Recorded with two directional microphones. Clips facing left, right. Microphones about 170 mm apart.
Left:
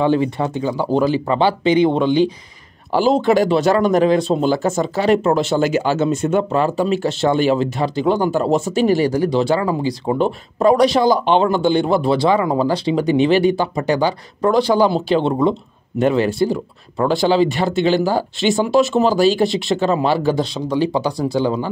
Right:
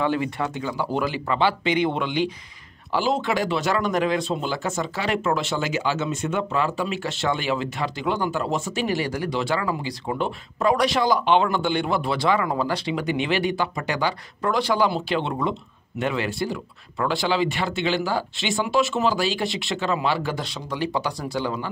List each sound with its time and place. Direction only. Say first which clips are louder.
0.0 s speech: left 7 dB; 30° left (ahead or behind)